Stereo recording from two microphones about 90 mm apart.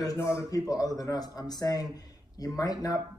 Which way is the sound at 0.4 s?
40° left (ahead or behind).